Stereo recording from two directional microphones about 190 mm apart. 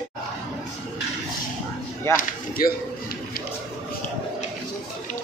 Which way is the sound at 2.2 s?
50° left (ahead or behind).